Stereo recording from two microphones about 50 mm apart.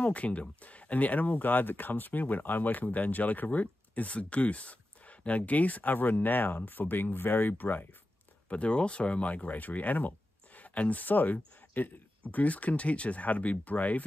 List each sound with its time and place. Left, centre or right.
0.0 s speech: left
8.5 s speech: left